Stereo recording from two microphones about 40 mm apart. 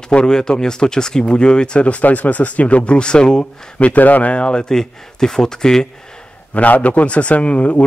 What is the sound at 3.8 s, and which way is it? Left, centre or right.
Speech, left.